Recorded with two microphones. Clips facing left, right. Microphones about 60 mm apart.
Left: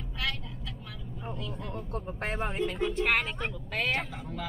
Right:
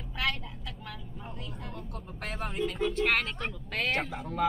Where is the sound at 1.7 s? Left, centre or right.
Left; by 4.1 s centre.